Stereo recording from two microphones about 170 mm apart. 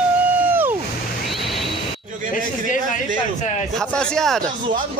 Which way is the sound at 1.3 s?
Centre (ahead or behind).